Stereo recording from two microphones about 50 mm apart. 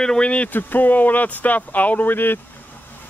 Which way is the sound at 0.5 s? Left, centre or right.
Left.